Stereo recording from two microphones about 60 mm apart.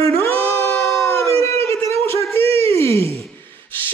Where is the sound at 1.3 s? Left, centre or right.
Left.